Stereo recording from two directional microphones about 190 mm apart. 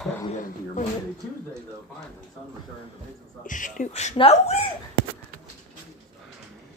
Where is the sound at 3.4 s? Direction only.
45° left (ahead or behind).